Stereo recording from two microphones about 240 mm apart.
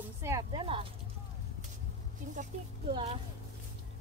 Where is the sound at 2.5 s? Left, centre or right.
Right.